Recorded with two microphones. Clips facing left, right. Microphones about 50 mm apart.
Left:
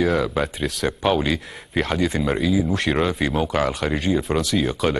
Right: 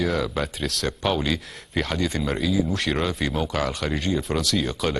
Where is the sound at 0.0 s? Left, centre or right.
Centre.